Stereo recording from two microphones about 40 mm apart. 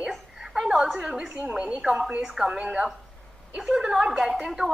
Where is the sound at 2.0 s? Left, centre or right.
Right.